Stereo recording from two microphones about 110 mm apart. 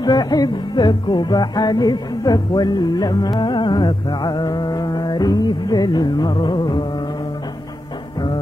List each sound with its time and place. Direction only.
0.0 s music: 40° left (ahead or behind)